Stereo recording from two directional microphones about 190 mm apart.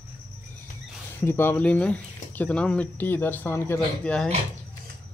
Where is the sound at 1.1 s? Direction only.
10° left (ahead or behind).